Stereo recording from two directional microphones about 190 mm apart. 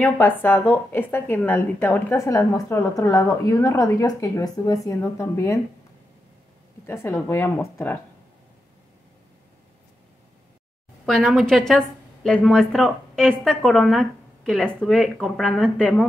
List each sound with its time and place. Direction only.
0.0 s a woman's voice: 10° left (ahead or behind)
6.9 s a woman's voice: 15° left (ahead or behind)
11.1 s a woman's voice: centre (ahead or behind)